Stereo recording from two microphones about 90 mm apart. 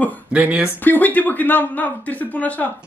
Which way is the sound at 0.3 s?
20° right (ahead or behind).